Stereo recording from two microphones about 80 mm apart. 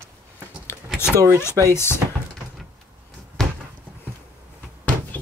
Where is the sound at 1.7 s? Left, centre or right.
Left.